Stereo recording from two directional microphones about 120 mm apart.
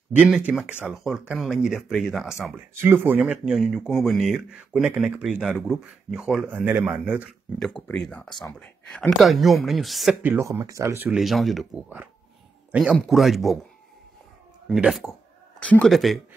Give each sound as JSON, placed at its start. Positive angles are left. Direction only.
{"t": 0.1, "sound": "speech", "side_deg": -10}
{"t": 2.8, "sound": "speech", "side_deg": -20}
{"t": 4.5, "sound": "speech", "side_deg": -10}
{"t": 7.5, "sound": "speech", "side_deg": 5}
{"t": 10.2, "sound": "speech", "side_deg": -20}
{"t": 11.1, "sound": "speech", "side_deg": 0}
{"t": 14.7, "sound": "speech", "side_deg": 0}
{"t": 15.6, "sound": "speech", "side_deg": 10}